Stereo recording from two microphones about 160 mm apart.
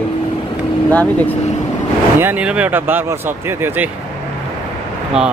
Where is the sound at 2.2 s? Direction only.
10° right (ahead or behind).